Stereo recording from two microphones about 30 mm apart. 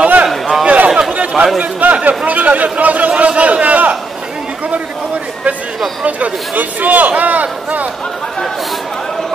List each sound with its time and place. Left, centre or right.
0.0 s a sound: right
1.6 s a man's voice: right
6.0 s a man's voice: right